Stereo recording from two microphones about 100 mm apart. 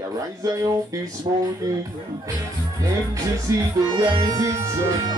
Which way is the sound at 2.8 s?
35° right (ahead or behind).